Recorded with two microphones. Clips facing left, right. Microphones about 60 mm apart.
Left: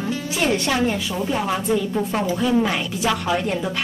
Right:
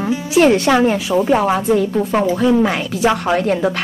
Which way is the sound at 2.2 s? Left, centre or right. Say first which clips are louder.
Right 8 dB; right.